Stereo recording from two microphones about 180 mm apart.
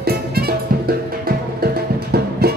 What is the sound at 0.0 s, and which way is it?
Music, 60° right (ahead or behind).